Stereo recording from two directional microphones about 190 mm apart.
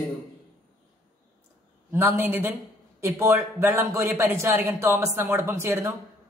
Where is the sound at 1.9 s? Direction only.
15° right (ahead or behind).